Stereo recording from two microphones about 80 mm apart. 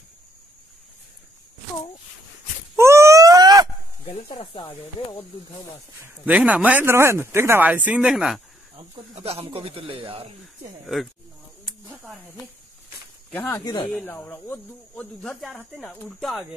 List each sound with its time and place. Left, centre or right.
2.8 s a sound: right
4.3 s speech: left
6.0 s speech: centre
8.1 s speech: centre
12.0 s speech: centre
13.3 s speech: left
15.2 s speech: centre